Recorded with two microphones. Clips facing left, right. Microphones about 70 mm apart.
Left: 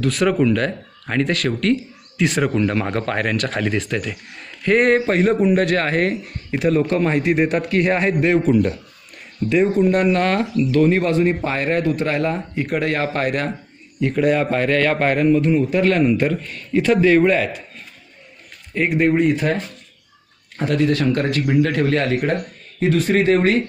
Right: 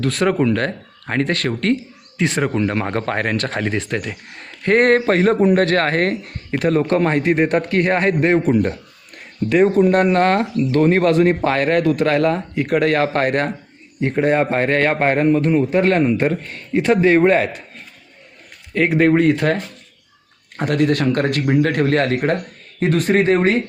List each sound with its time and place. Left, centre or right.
0.0 s speech: right
4.8 s a man's voice: right
8.3 s speech: right
9.1 s speech: right
14.0 s speech: right
18.7 s speech: right
20.5 s a man's voice: right